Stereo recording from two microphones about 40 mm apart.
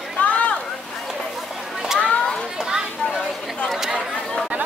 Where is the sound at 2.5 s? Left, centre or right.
Centre.